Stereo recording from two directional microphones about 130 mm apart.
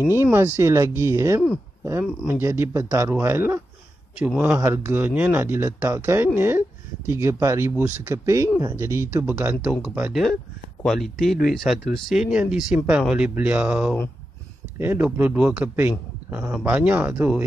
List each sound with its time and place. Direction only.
0.2 s speech: 20° right (ahead or behind)
9.6 s speech: 5° right (ahead or behind)
10.8 s speech: centre (ahead or behind)